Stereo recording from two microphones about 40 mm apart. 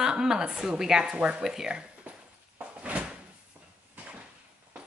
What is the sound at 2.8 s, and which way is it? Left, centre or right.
Door, right.